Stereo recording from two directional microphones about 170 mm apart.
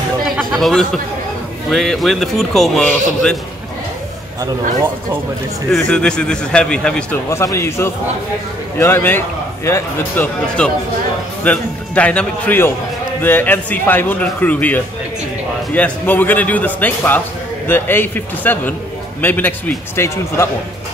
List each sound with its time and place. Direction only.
0.4 s chatter: centre (ahead or behind)
1.7 s a man's voice: centre (ahead or behind)
5.7 s a man's voice: 5° left (ahead or behind)
7.2 s a man's voice: 15° left (ahead or behind)